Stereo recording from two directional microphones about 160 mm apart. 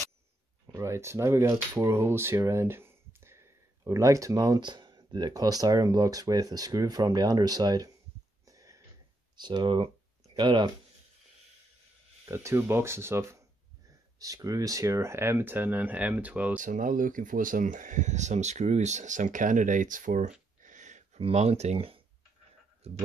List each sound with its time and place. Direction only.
0.7 s speech: 20° right (ahead or behind)
8.5 s a sound: 20° right (ahead or behind)
9.4 s speech: 30° right (ahead or behind)
12.3 s speech: 15° right (ahead or behind)
16.5 s speech: 55° right (ahead or behind)
20.6 s a sound: 50° right (ahead or behind)
22.8 s speech: 40° right (ahead or behind)